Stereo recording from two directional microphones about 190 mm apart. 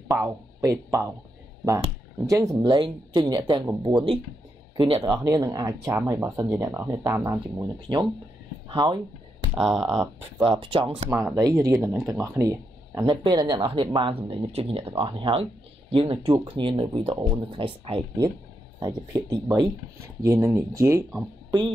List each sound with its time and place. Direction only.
0.1 s speech: 15° right (ahead or behind)
2.2 s speech: 15° right (ahead or behind)
5.2 s speech: 20° right (ahead or behind)
9.6 s speech: centre (ahead or behind)
10.4 s speech: 25° right (ahead or behind)
11.1 s speech: 10° right (ahead or behind)